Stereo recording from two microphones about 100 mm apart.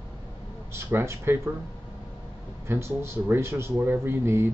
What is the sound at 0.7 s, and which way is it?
Speech, 25° right (ahead or behind).